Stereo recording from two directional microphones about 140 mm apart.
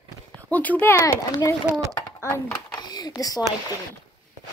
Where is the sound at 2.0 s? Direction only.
20° left (ahead or behind).